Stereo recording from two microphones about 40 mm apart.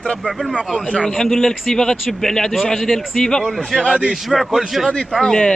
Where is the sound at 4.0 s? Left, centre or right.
Centre.